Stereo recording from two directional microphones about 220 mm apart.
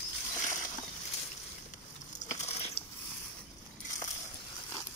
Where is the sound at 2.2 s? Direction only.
35° left (ahead or behind).